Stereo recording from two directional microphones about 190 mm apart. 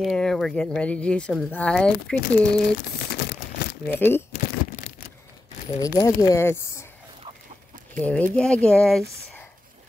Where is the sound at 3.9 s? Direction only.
10° left (ahead or behind).